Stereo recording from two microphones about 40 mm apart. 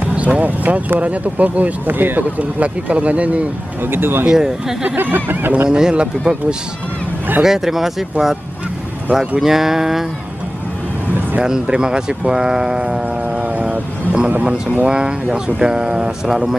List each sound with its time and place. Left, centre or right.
0.1 s speech: right
2.3 s speech: right
3.9 s speech: right
4.3 s speech: centre
4.9 s speech: right
5.7 s speech: centre
7.4 s speech: centre
9.4 s speech: centre
11.6 s speech: right
13.6 s vehicle: right
14.4 s speech: right
14.9 s speech: centre